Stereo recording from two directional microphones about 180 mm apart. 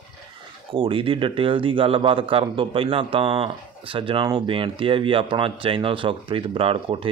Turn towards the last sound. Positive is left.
turn(degrees=-30)  # may be behind; listen again after turning